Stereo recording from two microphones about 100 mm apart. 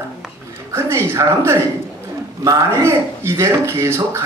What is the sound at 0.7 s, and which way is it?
A man's voice, 25° right (ahead or behind).